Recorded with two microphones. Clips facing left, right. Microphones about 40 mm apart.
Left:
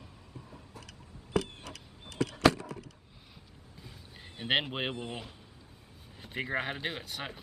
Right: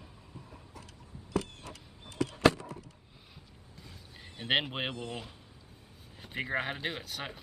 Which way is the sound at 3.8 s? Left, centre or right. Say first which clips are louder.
Even; centre.